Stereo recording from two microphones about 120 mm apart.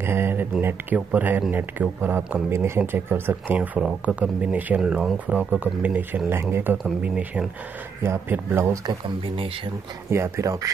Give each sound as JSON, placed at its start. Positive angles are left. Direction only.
{"t": 0.0, "sound": "speech", "side_deg": -20}
{"t": 10.0, "sound": "speech", "side_deg": -20}